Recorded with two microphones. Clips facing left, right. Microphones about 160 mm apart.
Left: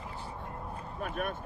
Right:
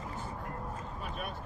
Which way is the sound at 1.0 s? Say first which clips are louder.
Left 8 dB; 55° left (ahead or behind).